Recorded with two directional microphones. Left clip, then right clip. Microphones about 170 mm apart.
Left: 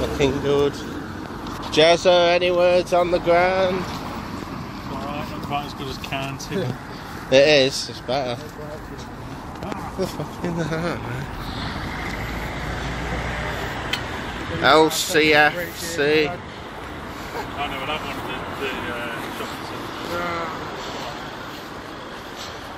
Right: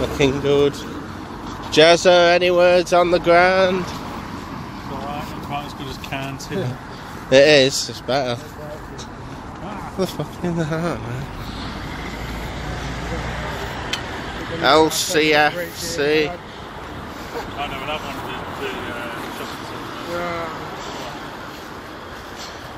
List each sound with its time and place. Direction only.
0.2 s speech: 45° right (ahead or behind)
1.7 s speech: 60° right (ahead or behind)
5.0 s vehicle: centre (ahead or behind)
6.1 s speech: centre (ahead or behind)
7.2 s speech: 55° right (ahead or behind)
9.9 s speech: 55° right (ahead or behind)
10.6 s speech: 35° right (ahead or behind)
14.6 s speech: 5° right (ahead or behind)